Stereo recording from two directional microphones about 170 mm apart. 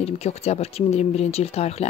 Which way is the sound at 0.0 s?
40° left (ahead or behind).